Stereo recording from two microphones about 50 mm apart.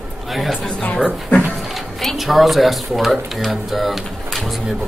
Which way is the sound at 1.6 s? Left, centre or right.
Centre.